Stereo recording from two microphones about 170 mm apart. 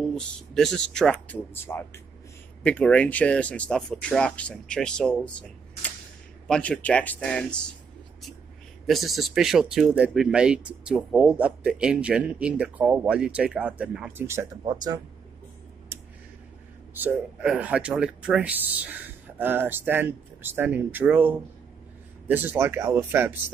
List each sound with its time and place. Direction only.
0.0 s speech: 5° left (ahead or behind)
8.8 s speech: centre (ahead or behind); by 15.0 s 25° right (ahead or behind)
16.9 s speech: 10° right (ahead or behind)